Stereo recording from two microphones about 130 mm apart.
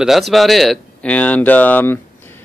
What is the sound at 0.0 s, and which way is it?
Speech, centre (ahead or behind).